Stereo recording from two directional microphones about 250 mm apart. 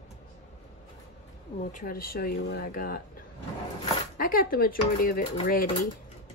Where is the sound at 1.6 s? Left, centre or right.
Left.